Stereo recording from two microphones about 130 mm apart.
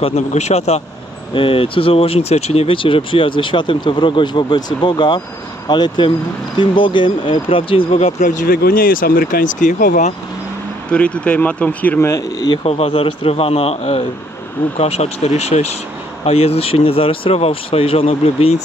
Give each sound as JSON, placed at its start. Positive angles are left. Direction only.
{"t": 0.0, "sound": "speech", "side_deg": 55}
{"t": 1.3, "sound": "speech", "side_deg": 45}
{"t": 8.2, "sound": "speech", "side_deg": 75}
{"t": 10.9, "sound": "speech", "side_deg": 10}
{"t": 12.6, "sound": "speech", "side_deg": 50}